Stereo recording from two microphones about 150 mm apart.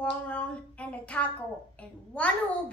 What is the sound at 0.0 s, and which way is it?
A child's voice, 10° left (ahead or behind).